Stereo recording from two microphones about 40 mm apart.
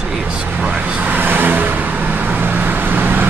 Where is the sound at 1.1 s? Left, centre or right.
Right.